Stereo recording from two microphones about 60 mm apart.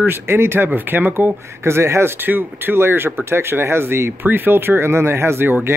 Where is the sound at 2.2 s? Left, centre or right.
Right.